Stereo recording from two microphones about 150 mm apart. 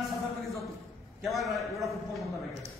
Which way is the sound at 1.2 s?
Centre (ahead or behind).